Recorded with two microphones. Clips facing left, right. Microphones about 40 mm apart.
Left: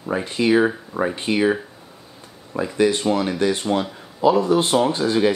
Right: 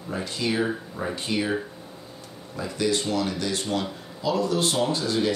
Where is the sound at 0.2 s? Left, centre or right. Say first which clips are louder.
Left 8 dB; left.